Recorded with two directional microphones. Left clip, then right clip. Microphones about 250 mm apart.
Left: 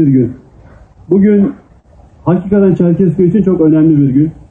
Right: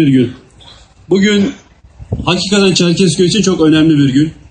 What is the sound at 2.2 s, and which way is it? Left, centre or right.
Speech, right.